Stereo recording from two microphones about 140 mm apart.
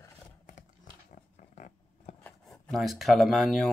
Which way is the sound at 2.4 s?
5° left (ahead or behind).